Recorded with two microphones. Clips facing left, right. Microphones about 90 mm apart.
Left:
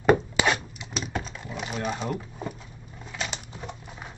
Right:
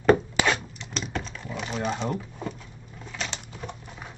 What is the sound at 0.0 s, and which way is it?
Computer keyboard, 10° left (ahead or behind).